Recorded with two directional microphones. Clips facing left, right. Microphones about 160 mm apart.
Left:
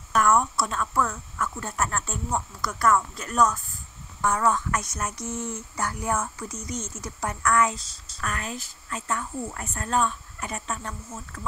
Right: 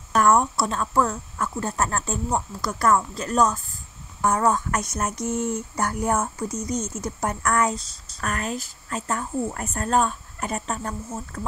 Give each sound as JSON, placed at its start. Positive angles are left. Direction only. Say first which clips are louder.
{"t": 0.1, "sound": "speech", "louder": "right 3 dB", "side_deg": -35}
{"t": 5.2, "sound": "a sound", "louder": "right 7 dB", "side_deg": -65}
{"t": 5.8, "sound": "speech", "louder": "right 3 dB", "side_deg": -45}